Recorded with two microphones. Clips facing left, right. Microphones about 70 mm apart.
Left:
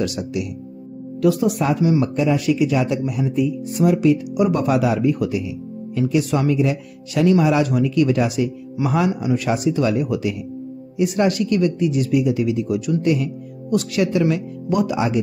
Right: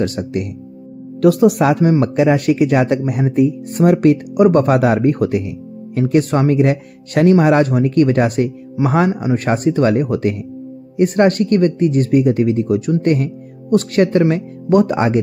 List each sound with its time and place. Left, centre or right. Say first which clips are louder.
0.0 s speech: right 4 dB; right
1.2 s speech: right 6 dB; right
1.9 s speech: right 5 dB; right